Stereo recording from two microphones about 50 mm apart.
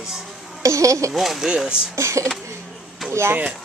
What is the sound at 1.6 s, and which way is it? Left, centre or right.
Speech, centre.